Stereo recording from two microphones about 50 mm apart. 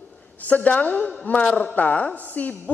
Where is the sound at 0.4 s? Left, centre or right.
Left.